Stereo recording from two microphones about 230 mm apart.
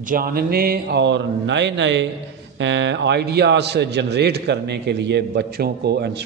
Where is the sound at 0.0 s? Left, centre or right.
Right.